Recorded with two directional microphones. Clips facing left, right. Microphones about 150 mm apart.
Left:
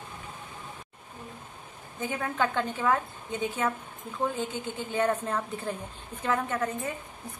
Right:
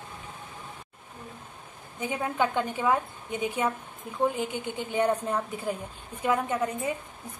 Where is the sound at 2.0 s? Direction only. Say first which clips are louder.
Right 1 dB; 15° right (ahead or behind).